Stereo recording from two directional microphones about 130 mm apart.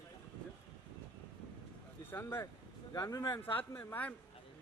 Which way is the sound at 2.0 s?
15° left (ahead or behind).